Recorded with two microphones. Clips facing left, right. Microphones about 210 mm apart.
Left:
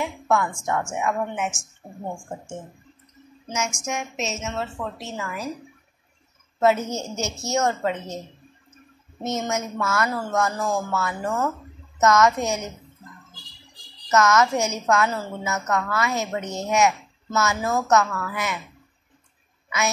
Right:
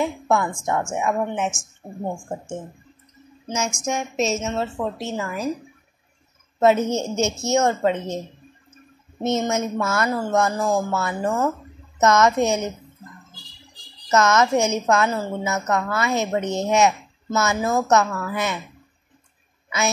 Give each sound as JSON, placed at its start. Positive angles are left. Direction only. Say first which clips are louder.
{"t": 0.0, "sound": "a woman's voice", "louder": "right 2 dB", "side_deg": -25}
{"t": 3.4, "sound": "a woman's voice", "louder": "right 3 dB", "side_deg": -30}
{"t": 6.6, "sound": "a woman's voice", "louder": "right 3 dB", "side_deg": -25}
{"t": 9.2, "sound": "a woman's voice", "louder": "right 5 dB", "side_deg": -25}
{"t": 14.1, "sound": "a woman's voice", "louder": "right 2 dB", "side_deg": -25}